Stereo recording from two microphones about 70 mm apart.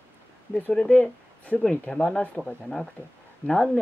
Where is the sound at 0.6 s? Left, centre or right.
Centre.